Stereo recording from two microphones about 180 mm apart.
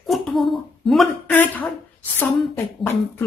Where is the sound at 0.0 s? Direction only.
Centre (ahead or behind).